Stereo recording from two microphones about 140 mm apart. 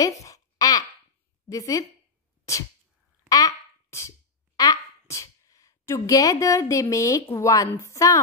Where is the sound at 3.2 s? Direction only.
25° left (ahead or behind).